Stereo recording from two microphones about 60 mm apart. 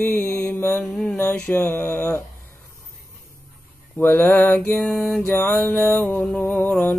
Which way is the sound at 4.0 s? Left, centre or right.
Left.